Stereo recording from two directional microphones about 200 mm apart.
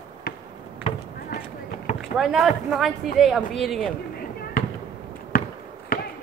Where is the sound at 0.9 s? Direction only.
30° left (ahead or behind).